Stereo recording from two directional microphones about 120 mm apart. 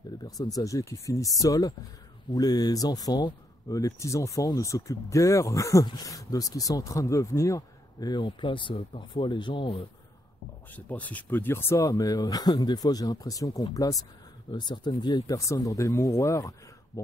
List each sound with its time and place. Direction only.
0.6 s speech: 30° left (ahead or behind); by 9.8 s 45° left (ahead or behind)
10.7 s speech: 15° left (ahead or behind)